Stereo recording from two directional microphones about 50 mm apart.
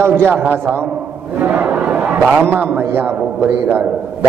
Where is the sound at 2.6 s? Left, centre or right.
Right.